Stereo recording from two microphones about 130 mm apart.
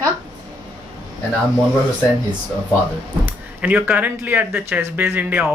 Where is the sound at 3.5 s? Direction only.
10° right (ahead or behind).